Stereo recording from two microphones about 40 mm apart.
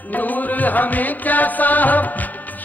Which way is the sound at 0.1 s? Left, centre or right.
Left.